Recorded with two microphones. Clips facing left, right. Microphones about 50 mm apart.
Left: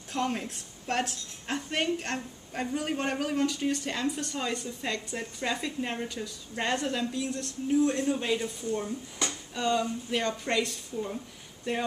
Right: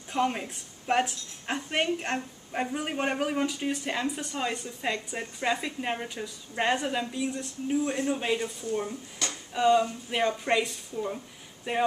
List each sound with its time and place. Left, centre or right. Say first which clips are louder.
0.1 s a woman's voice: right 3 dB; centre
9.3 s a sound: right 7 dB; centre
9.8 s a woman's voice: right 2 dB; centre